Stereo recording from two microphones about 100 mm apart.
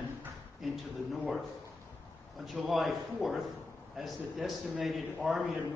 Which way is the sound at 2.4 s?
Centre (ahead or behind).